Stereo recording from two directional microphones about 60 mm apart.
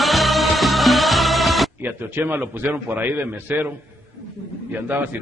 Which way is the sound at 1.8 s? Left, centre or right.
Right.